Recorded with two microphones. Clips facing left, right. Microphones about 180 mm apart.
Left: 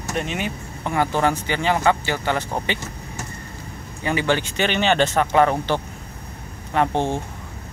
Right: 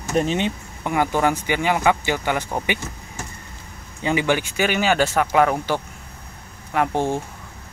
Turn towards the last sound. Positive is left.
turn(degrees=-10)  # may be behind; listen again after turning